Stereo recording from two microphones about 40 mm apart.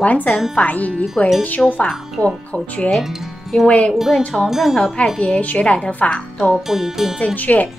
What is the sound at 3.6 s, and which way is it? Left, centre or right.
Speech, left.